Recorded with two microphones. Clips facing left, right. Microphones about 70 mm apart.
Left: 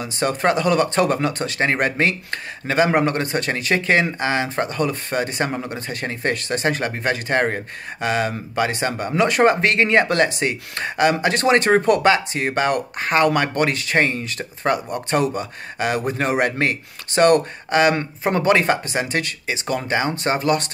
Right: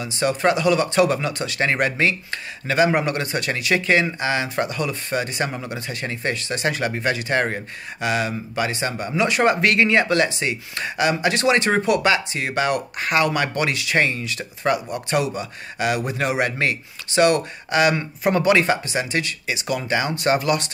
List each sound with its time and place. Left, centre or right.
0.0 s speech: left
9.4 s speech: left